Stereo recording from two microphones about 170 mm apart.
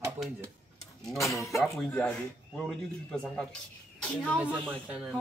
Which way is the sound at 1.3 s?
20° left (ahead or behind).